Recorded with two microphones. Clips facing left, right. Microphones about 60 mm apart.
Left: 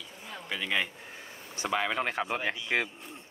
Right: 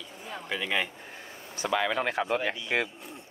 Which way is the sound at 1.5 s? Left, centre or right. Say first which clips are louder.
Right 2 dB; left.